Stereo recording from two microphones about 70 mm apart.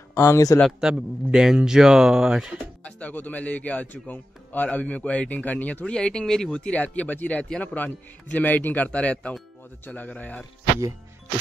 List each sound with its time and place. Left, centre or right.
0.1 s speech: left
0.7 s speech: centre
2.8 s a man's voice: left